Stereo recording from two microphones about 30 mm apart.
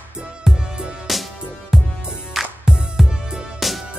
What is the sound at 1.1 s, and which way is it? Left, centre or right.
Music, centre.